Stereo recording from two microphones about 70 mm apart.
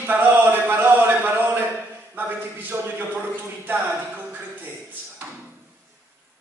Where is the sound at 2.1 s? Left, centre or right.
Right.